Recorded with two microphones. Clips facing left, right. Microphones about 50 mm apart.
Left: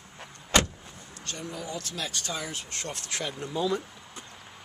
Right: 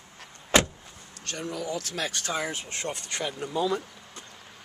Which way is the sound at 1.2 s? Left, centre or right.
Right.